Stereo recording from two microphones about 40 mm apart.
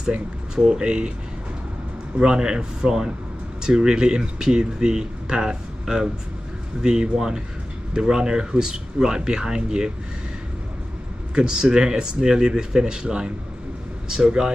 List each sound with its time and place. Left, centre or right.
0.1 s speech: right
2.1 s speech: centre
11.3 s speech: right